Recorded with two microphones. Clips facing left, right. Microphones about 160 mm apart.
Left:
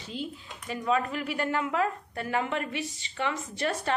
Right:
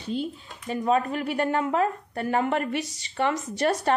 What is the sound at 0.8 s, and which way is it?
A woman's voice, 40° right (ahead or behind).